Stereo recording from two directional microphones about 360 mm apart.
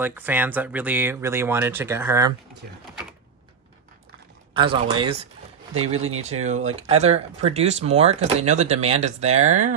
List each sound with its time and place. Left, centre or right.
0.0 s speech: centre
4.6 s speech: centre
5.9 s speech: right
6.4 s speech: centre